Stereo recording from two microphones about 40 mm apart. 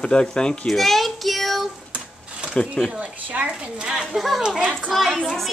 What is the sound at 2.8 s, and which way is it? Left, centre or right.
Speech, left.